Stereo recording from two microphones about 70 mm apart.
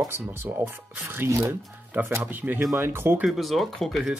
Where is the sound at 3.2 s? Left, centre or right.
Centre.